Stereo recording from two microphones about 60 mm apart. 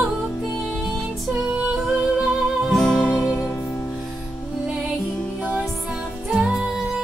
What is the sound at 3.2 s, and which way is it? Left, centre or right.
Music, left.